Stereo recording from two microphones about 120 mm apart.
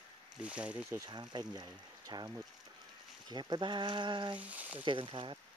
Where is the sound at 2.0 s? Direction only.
35° right (ahead or behind).